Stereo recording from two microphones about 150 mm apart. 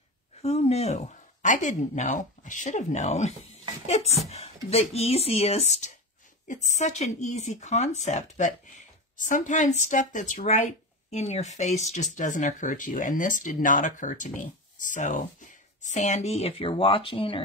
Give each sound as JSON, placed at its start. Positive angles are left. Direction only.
{"t": 0.4, "sound": "speech", "side_deg": 45}